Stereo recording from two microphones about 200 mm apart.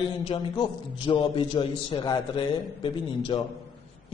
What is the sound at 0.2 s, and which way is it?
A man's voice, 25° left (ahead or behind).